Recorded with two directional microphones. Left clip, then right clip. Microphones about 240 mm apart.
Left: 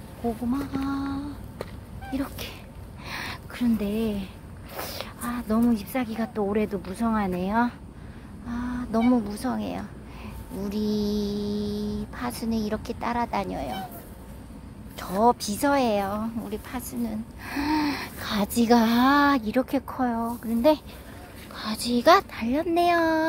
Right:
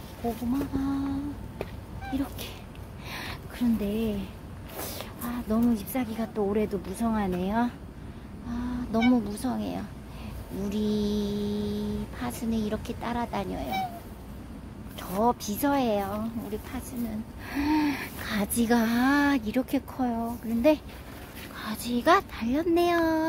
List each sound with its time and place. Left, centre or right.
0.5 s speech: centre
2.1 s speech: centre
3.1 s a sound: centre
4.7 s speech: centre
15.0 s speech: centre